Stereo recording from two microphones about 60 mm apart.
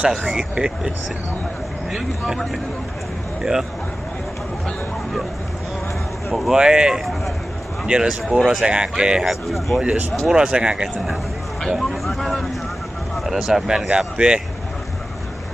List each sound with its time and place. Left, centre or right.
0.1 s speech: centre
0.4 s speech: centre
6.3 s speech: centre
9.3 s speech: centre
9.8 s speech: centre
11.7 s speech: centre